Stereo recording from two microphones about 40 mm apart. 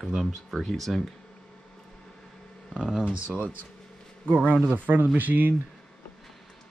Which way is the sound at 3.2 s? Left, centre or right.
Right.